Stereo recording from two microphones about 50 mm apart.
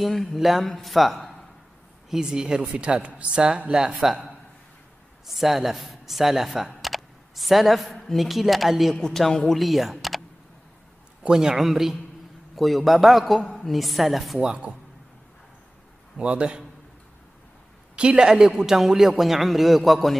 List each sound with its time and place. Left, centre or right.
0.0 s a man's voice: centre
2.0 s a woman's voice: centre
5.2 s a man's voice: centre
8.9 s a man's voice: centre
9.6 s speech: centre
11.2 s a woman's voice: centre
16.2 s speech: right
17.9 s a woman's voice: right; by 20.2 s centre